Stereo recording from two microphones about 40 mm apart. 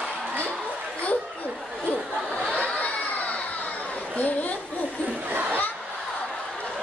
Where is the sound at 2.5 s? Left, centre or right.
Left.